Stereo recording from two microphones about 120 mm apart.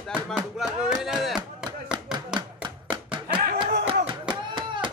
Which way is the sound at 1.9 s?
40° right (ahead or behind).